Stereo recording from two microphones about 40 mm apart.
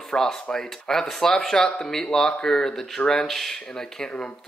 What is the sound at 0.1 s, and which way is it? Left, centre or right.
Speech, centre.